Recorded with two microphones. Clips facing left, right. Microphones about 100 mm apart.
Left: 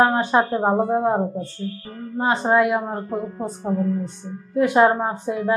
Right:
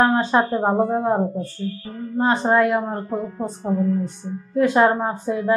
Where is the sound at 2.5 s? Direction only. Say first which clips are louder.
Even; 15° left (ahead or behind).